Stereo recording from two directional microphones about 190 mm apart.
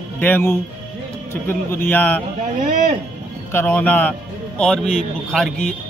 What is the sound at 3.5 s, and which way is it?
A man's voice, 10° left (ahead or behind).